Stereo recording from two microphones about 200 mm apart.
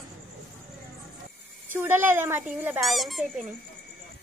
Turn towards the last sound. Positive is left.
turn(degrees=0)  # may be behind; listen again after turning